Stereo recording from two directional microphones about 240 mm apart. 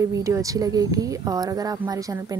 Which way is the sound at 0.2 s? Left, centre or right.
Centre.